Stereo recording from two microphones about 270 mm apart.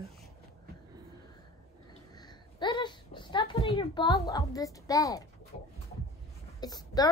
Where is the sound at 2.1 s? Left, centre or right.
Centre.